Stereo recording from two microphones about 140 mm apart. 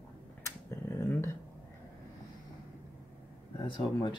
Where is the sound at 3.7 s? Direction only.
35° left (ahead or behind).